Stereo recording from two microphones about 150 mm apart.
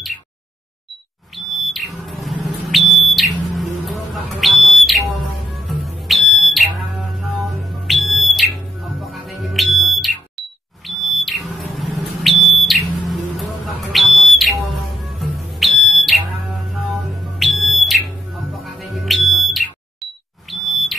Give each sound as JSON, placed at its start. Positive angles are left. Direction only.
{"t": 1.5, "sound": "smoke detector", "side_deg": 0}